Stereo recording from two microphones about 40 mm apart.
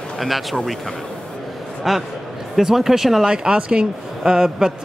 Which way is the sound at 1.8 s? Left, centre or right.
Centre.